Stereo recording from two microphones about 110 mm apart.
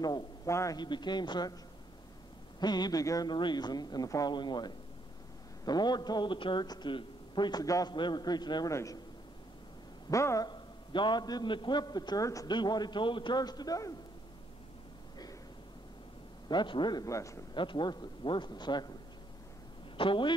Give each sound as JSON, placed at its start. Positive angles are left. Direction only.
{"t": 0.5, "sound": "speech", "side_deg": 25}
{"t": 0.7, "sound": "speech", "side_deg": 45}
{"t": 2.6, "sound": "a man's voice", "side_deg": 40}
{"t": 10.0, "sound": "speech", "side_deg": 30}
{"t": 10.5, "sound": "a man's voice", "side_deg": 45}
{"t": 16.4, "sound": "a man's voice", "side_deg": 45}
{"t": 17.6, "sound": "speech", "side_deg": 45}
{"t": 20.0, "sound": "speech", "side_deg": 50}